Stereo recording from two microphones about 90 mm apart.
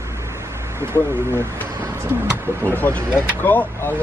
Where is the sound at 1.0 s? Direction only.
30° right (ahead or behind).